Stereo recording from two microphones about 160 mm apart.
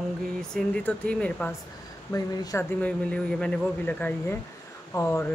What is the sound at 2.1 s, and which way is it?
A man's voice, 20° left (ahead or behind).